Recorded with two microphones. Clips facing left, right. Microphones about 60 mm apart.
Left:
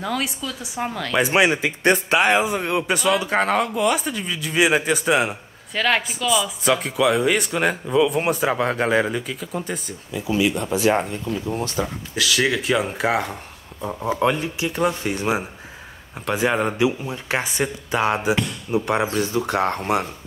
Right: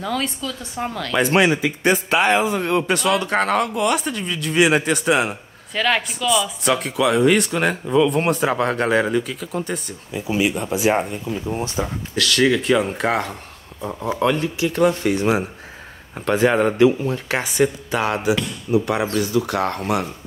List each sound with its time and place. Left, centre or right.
0.0 s a woman's voice: centre
10.1 s speech: centre
10.5 s speech: centre
11.5 s speech: centre
12.2 s speech: centre
14.0 s a woman's voice: centre
16.2 s speech: centre
17.1 s speech: left